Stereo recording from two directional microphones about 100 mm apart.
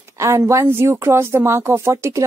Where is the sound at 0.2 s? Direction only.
30° right (ahead or behind).